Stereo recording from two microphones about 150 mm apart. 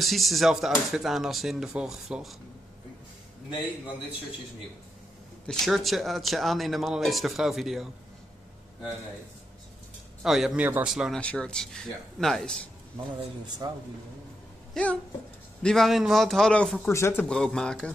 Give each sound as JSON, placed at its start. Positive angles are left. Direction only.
{"t": 0.0, "sound": "a man's voice", "side_deg": 0}
{"t": 5.5, "sound": "a man's voice", "side_deg": 0}
{"t": 10.2, "sound": "a man's voice", "side_deg": 0}
{"t": 11.1, "sound": "a man's voice", "side_deg": 5}
{"t": 14.7, "sound": "a sound", "side_deg": 10}
{"t": 15.6, "sound": "a man's voice", "side_deg": 0}
{"t": 16.9, "sound": "speech", "side_deg": 15}
{"t": 17.3, "sound": "a man's voice", "side_deg": 5}